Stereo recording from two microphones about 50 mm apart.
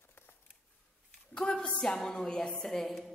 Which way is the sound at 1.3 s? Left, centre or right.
Centre.